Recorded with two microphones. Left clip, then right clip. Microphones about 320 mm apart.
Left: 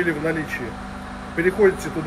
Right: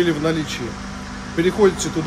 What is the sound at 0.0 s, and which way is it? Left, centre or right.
Speech, centre.